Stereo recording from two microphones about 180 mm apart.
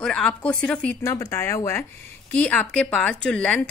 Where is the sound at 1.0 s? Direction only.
15° left (ahead or behind).